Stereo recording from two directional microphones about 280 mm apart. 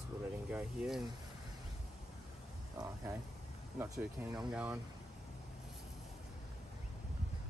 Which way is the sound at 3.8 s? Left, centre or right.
Centre.